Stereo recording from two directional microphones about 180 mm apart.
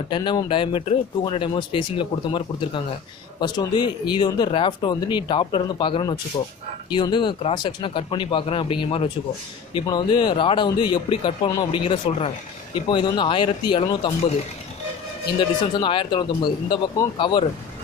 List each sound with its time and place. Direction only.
0.1 s speech: 25° left (ahead or behind)
15.8 s speech: 25° left (ahead or behind)